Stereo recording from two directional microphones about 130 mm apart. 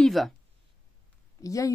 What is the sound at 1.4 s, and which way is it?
Speech, 25° left (ahead or behind).